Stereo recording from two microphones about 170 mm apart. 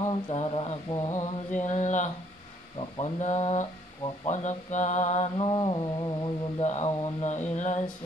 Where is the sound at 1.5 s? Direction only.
45° left (ahead or behind); by 6.3 s 25° left (ahead or behind).